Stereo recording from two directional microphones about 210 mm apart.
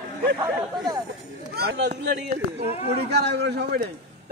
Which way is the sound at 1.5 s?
50° right (ahead or behind).